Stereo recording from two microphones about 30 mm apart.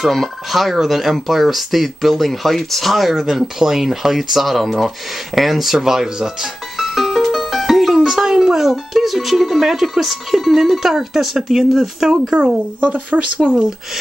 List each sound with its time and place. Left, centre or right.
0.5 s speech: centre
3.2 s speech: centre
6.8 s music: centre
11.5 s speech: centre
12.1 s speech: right
12.8 s speech: right
13.5 s speech: centre